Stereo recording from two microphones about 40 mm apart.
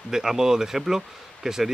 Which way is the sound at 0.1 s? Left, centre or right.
Centre.